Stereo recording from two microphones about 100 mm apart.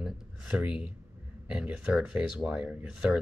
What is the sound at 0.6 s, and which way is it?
Speech, 10° right (ahead or behind).